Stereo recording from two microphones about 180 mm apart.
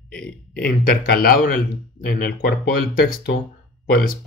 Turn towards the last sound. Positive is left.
turn(degrees=55)  # may be behind; listen again after turning